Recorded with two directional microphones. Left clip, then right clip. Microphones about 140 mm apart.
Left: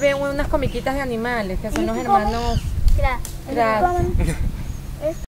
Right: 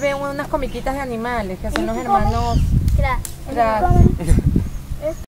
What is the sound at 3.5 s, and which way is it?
Speech, 35° left (ahead or behind).